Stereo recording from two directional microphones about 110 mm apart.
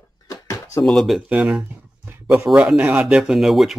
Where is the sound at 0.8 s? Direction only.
Centre (ahead or behind).